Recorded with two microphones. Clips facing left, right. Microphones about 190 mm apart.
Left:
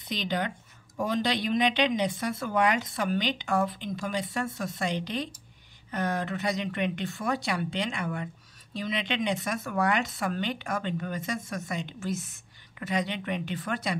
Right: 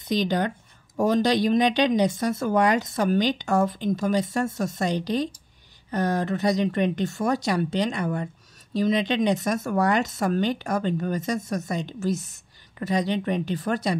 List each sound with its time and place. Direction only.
0.0 s speech: 40° right (ahead or behind)